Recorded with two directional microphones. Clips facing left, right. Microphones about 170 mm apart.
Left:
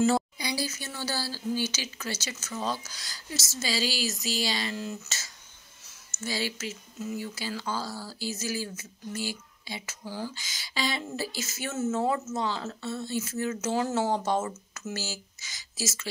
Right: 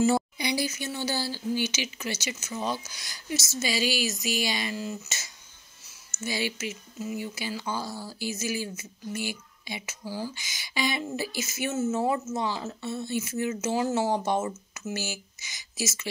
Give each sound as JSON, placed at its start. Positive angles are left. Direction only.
{"t": 0.0, "sound": "speech", "side_deg": -20}